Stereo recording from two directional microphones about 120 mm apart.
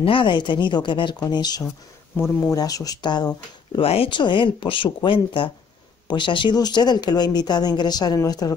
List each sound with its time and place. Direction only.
0.0 s speech: 45° left (ahead or behind)
2.1 s speech: 20° left (ahead or behind)
3.8 s speech: 50° left (ahead or behind); by 8.5 s 30° left (ahead or behind)